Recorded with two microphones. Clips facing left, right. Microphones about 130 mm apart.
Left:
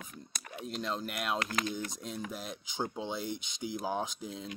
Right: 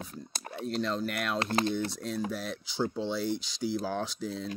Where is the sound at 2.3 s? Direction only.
15° left (ahead or behind).